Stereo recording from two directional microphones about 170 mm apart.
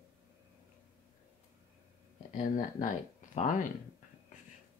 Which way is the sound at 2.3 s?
50° left (ahead or behind).